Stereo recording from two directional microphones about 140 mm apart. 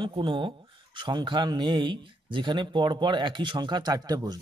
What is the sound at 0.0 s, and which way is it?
Speech, 35° right (ahead or behind).